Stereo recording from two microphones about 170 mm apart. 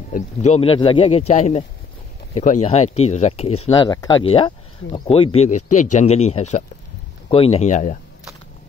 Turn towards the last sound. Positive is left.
turn(degrees=45)  # may be behind; listen again after turning